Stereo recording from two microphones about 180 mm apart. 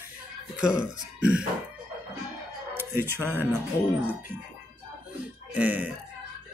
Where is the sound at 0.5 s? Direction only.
5° right (ahead or behind).